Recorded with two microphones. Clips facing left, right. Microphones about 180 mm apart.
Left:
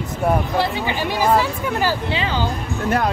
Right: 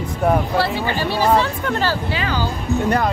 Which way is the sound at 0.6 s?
15° left (ahead or behind).